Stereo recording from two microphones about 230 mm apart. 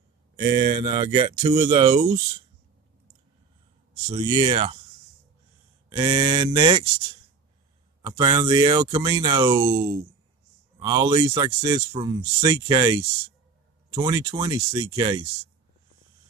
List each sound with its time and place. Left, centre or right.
0.6 s speech: centre
4.1 s speech: right
5.9 s speech: centre
8.0 s speech: centre